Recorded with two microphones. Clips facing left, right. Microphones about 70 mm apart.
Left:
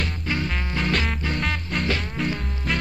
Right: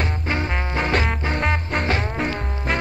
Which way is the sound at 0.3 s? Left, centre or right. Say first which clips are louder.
Right 2 dB; right.